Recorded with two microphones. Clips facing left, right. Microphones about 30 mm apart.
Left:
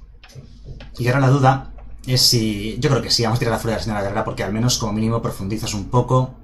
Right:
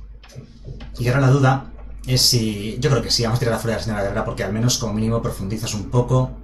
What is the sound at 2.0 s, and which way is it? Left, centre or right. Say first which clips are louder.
Speech: left 1 dB; left.